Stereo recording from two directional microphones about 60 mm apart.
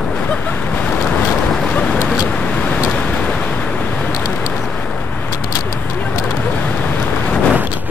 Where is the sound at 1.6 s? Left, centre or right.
Left.